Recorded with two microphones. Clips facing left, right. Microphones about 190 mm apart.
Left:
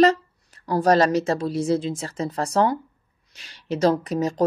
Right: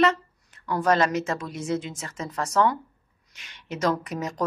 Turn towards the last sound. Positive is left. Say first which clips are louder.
# left 6 dB
turn(degrees=30)  # may be behind; listen again after turning